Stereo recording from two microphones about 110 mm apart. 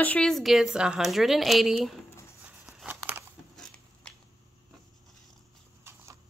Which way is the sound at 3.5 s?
5° left (ahead or behind).